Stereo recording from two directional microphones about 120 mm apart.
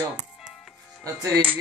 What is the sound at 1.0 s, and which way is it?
Speech, 25° right (ahead or behind).